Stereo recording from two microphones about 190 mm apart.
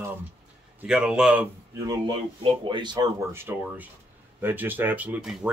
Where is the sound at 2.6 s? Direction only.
25° right (ahead or behind); by 5.5 s 10° right (ahead or behind).